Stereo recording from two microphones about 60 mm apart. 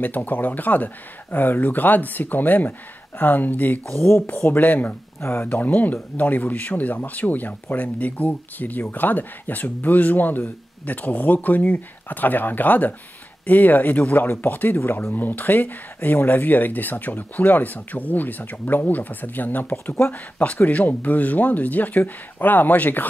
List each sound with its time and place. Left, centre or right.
0.0 s speech: left
3.8 s speech: centre
4.5 s speech: left
5.2 s speech: left
5.5 s speech: left